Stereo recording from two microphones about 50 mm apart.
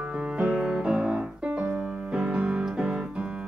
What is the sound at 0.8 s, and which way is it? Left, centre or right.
Piano, right.